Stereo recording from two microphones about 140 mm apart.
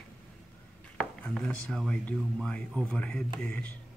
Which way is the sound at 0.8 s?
5° left (ahead or behind).